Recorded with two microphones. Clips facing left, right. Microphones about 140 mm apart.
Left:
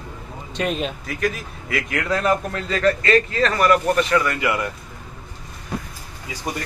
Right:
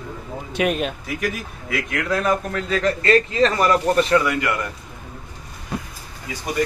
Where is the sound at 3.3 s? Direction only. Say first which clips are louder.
Even; 25° right (ahead or behind).